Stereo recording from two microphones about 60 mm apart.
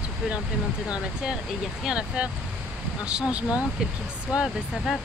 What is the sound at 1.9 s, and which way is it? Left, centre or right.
Speech, centre.